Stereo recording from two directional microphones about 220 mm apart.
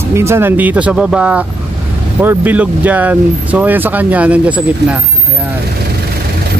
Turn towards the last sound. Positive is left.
turn(degrees=-5)  # may be behind; listen again after turning